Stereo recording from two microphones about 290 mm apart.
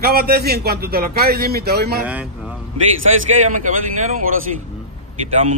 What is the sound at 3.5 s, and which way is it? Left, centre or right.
Speech, right.